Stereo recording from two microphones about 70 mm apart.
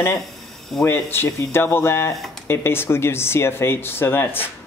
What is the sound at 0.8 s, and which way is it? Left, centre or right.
Speech, left.